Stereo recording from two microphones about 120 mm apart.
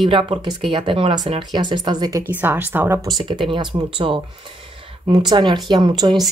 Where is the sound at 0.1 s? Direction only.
45° right (ahead or behind).